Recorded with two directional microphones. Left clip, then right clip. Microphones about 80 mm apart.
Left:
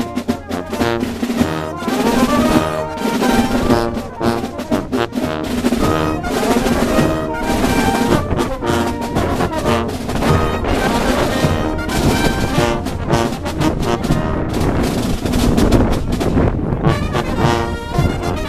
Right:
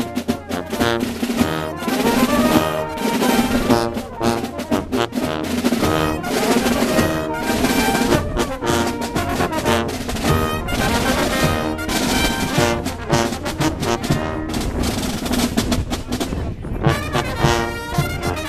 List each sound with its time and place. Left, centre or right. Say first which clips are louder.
0.3 s music: left 2 dB; right
14.8 s a sound: left 4 dB; right
16.8 s music: even; right